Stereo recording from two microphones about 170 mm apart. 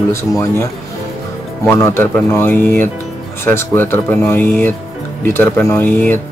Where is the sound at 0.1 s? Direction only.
15° left (ahead or behind).